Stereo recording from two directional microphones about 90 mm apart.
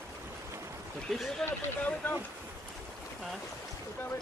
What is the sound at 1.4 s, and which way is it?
Speech, 20° left (ahead or behind).